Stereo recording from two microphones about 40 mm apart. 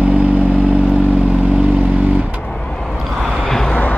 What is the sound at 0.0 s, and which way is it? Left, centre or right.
Vehicle, right.